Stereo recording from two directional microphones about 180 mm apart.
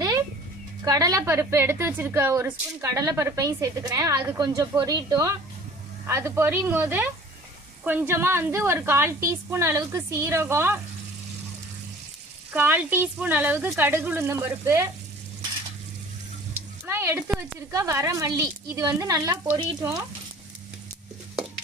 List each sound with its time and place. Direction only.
0.8 s a woman's voice: 20° right (ahead or behind)
8.1 s a woman's voice: 15° right (ahead or behind)
12.5 s a woman's voice: 10° right (ahead or behind)
16.8 s a woman's voice: 10° right (ahead or behind)